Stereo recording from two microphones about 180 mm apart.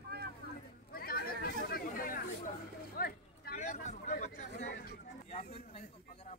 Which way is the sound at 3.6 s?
40° left (ahead or behind).